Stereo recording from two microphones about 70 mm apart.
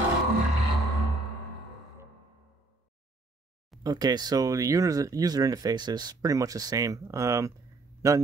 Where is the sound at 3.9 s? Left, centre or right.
Right.